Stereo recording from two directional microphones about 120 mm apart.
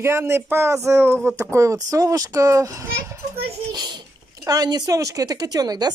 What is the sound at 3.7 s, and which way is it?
Babbling, 35° right (ahead or behind).